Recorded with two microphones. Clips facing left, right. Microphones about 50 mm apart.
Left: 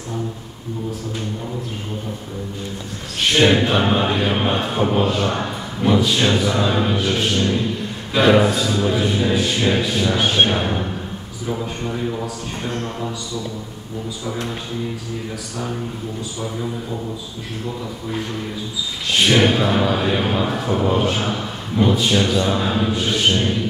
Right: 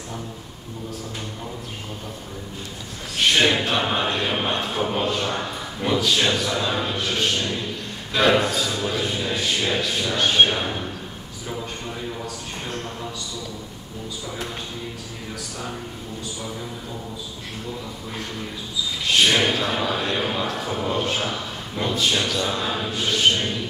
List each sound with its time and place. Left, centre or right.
3.3 s speech: centre
6.3 s speech: centre
19.3 s speech: centre